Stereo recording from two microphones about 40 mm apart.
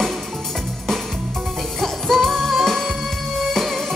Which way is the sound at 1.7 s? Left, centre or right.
Centre.